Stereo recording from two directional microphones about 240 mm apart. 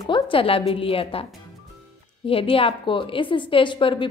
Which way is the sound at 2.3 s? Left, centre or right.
Left.